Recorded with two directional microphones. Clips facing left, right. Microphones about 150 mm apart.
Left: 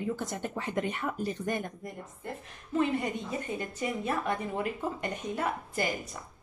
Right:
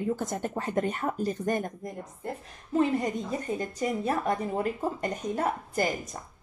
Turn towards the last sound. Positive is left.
turn(degrees=-40)  # may be behind; listen again after turning